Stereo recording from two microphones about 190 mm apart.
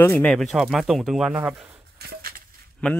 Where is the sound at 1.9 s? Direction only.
55° right (ahead or behind).